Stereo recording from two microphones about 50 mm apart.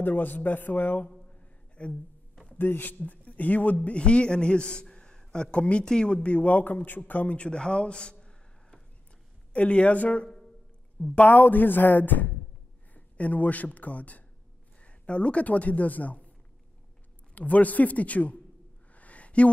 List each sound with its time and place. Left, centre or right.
0.0 s speech: left
1.3 s a sound: left
2.5 s speech: left
3.7 s a man's voice: left
9.5 s speech: left
17.4 s speech: left
18.9 s a sound: left